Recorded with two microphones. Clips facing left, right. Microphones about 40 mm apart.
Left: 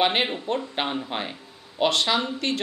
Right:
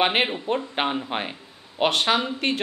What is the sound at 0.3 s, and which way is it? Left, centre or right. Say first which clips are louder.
Speech: right 1 dB; centre.